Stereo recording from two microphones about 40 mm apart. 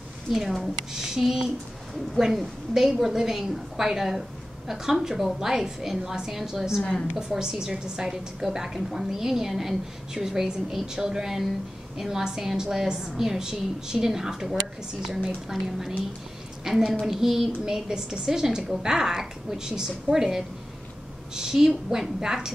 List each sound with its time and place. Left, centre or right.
1.1 s a woman's voice: centre
6.8 s a woman's voice: left
7.2 s a woman's voice: centre